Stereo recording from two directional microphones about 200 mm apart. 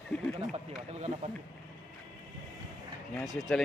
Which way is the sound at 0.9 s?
35° right (ahead or behind).